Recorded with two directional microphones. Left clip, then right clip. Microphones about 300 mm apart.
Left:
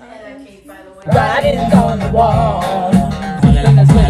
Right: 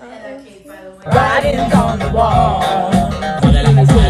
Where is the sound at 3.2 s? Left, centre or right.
Right.